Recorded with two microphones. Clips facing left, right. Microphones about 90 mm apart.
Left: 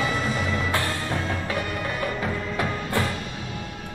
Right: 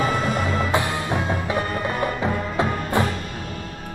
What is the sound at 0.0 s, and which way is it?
Music, 55° right (ahead or behind).